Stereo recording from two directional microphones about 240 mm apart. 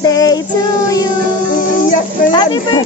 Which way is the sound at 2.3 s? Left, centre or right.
Centre.